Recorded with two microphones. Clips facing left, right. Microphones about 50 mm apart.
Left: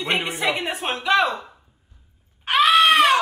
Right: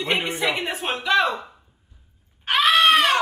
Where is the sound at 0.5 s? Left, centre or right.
Centre.